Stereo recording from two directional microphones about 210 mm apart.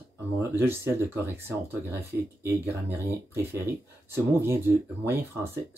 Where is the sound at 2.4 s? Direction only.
10° right (ahead or behind).